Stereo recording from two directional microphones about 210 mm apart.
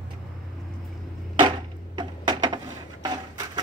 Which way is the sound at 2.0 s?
20° right (ahead or behind).